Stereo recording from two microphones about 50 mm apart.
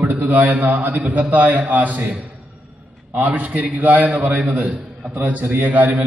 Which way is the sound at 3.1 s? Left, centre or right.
Right.